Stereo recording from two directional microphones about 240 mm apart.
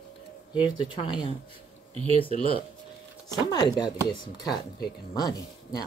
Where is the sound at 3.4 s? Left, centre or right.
Centre.